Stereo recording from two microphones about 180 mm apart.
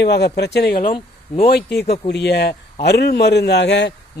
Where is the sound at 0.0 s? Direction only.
70° left (ahead or behind).